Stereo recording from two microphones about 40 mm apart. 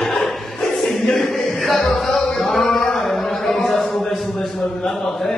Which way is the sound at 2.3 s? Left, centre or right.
Centre.